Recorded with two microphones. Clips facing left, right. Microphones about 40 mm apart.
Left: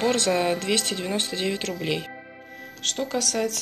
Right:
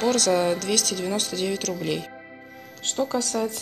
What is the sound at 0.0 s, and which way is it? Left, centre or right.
Speech, left.